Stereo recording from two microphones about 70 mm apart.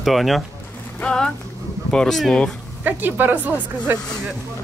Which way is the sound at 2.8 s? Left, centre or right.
Right.